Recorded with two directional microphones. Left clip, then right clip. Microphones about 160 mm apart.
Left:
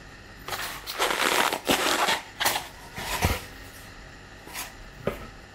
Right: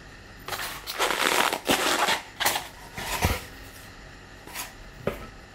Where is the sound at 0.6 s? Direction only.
35° right (ahead or behind).